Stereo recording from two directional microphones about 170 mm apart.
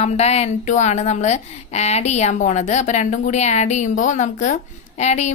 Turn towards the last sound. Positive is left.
turn(degrees=40)  # may be behind; listen again after turning